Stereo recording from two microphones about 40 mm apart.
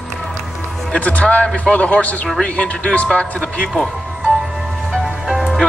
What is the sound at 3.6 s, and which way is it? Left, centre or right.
Speech, centre.